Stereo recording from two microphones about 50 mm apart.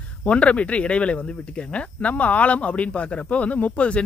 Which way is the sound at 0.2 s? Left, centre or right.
Left.